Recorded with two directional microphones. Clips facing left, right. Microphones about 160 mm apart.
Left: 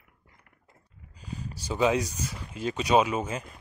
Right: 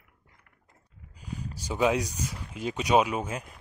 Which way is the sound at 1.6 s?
10° right (ahead or behind).